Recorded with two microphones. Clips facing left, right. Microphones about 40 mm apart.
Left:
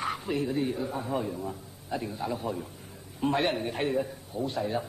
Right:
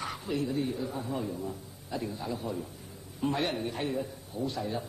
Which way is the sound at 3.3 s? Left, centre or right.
Left.